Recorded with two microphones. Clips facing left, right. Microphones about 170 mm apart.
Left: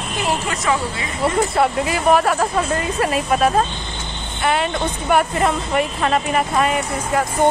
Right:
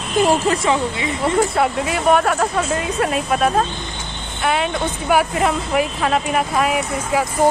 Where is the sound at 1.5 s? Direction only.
Centre (ahead or behind).